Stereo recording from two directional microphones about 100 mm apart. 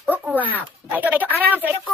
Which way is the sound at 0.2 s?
15° right (ahead or behind).